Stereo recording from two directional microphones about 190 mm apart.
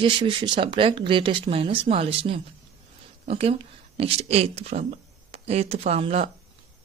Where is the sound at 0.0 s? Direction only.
25° right (ahead or behind).